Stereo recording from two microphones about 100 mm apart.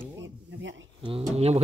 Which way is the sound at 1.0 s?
80° right.